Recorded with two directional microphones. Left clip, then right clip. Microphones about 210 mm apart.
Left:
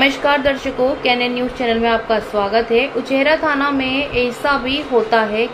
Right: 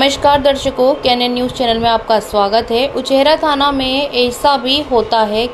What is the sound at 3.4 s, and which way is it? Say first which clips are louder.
Speech: right 4 dB; 30° right (ahead or behind).